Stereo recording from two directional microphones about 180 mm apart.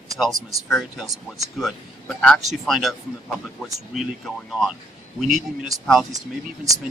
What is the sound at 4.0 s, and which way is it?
Speech, centre (ahead or behind).